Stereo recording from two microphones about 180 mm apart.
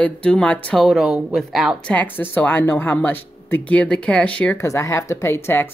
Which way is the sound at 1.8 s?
10° left (ahead or behind).